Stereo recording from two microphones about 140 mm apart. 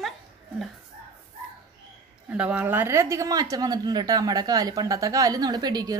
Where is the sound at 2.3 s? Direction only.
10° right (ahead or behind); by 5.9 s 30° right (ahead or behind).